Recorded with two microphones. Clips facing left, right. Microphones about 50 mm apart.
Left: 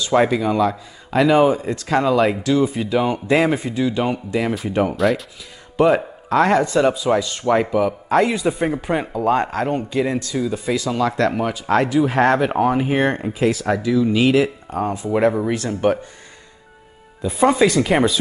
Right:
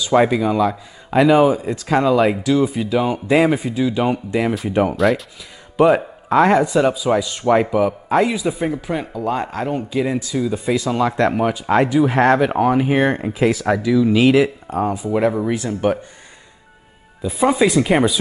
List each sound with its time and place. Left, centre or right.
0.0 s speech: centre
9.2 s speech: centre
17.2 s speech: centre